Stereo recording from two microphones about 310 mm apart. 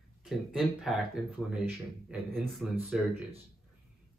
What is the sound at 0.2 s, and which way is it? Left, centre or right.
Speech, centre.